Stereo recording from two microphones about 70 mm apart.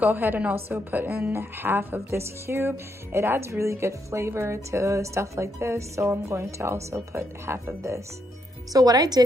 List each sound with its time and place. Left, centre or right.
0.0 s a woman's voice: right
8.7 s speech: right